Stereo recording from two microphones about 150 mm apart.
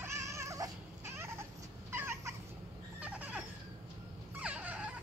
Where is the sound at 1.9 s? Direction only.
15° right (ahead or behind).